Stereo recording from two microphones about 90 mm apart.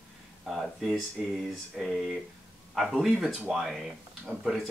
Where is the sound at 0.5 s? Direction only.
5° right (ahead or behind).